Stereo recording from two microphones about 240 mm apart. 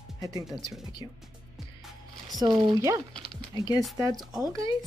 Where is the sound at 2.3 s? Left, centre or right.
Centre.